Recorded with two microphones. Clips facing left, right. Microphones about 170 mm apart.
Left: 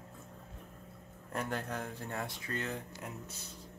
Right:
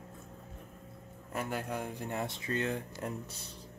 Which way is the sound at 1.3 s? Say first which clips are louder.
Right 1 dB; 10° right (ahead or behind).